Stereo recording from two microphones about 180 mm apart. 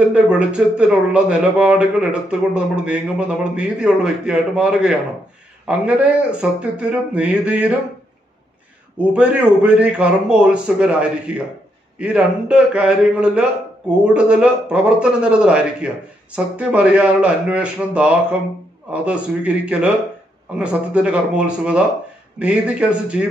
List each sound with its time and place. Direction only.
0.1 s a man's voice: 5° right (ahead or behind)
8.9 s a man's voice: 5° right (ahead or behind)